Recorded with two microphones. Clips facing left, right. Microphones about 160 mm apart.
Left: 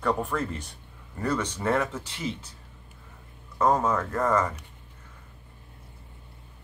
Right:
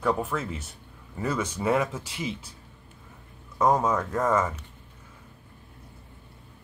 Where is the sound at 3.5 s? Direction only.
10° right (ahead or behind).